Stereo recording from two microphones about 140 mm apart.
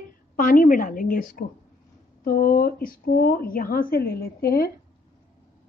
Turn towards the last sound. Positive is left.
turn(degrees=90)